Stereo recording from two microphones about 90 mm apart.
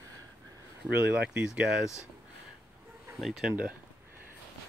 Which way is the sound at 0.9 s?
20° right (ahead or behind).